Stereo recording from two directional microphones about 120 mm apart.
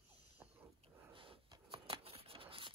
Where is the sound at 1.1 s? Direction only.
45° right (ahead or behind).